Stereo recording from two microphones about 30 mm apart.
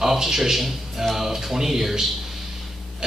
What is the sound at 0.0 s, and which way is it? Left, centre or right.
A man's voice, centre.